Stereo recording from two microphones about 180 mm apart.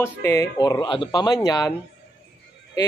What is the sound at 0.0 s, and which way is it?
Speech, 15° left (ahead or behind).